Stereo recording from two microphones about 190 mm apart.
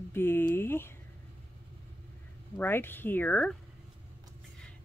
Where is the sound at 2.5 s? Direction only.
10° left (ahead or behind).